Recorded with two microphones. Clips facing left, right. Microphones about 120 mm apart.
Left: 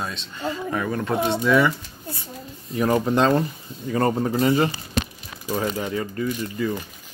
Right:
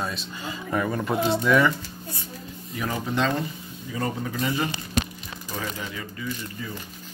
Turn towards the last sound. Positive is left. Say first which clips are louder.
# left 11 dB
turn(degrees=90)